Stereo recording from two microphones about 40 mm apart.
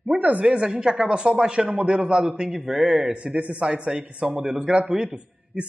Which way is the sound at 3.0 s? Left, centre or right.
Right.